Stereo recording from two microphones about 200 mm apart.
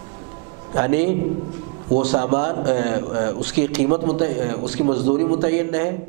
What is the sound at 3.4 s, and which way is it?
A man's voice, 10° right (ahead or behind).